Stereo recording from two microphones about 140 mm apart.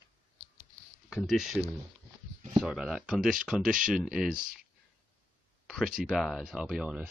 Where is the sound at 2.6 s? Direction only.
5° right (ahead or behind).